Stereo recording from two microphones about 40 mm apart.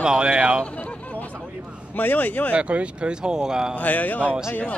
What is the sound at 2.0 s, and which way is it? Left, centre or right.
Speech, left.